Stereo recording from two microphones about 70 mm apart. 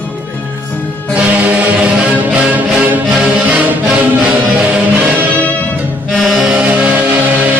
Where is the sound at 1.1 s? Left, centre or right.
Centre.